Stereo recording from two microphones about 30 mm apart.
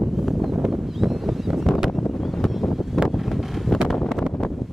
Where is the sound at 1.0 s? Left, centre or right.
Centre.